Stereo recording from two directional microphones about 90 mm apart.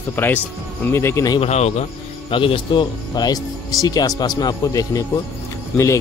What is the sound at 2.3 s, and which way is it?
Speech, 75° left (ahead or behind).